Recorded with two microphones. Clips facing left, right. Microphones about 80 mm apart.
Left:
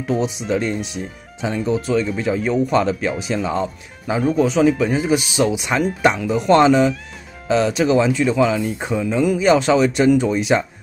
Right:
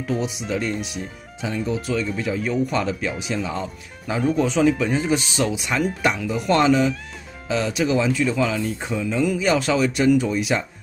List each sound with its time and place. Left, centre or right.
0.5 s speech: left
4.2 s speech: centre
5.7 s speech: left